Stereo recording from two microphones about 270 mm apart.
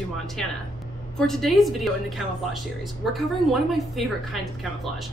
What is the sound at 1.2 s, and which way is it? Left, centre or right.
Speech, centre.